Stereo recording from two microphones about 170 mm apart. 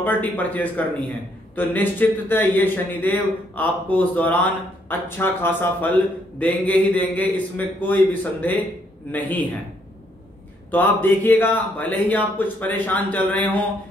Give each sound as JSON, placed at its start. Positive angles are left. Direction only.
{"t": 0.0, "sound": "a man's voice", "side_deg": 10}
{"t": 10.7, "sound": "a man's voice", "side_deg": 10}